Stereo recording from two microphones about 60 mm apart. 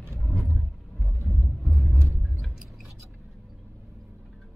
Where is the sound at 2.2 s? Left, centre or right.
Centre.